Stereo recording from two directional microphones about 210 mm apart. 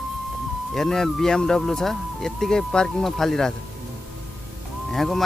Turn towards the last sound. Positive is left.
turn(degrees=0)  # may be behind; listen again after turning